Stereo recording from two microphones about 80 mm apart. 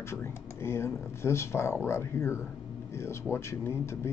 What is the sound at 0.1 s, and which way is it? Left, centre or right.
Speech, left.